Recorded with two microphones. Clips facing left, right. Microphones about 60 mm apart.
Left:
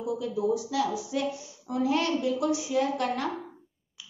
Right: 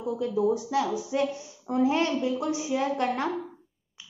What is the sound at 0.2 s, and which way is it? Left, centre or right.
A woman's voice, right.